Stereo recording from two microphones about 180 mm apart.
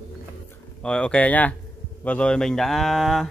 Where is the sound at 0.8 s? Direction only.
5° left (ahead or behind).